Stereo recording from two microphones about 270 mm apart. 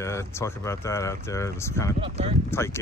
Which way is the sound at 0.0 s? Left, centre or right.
Centre.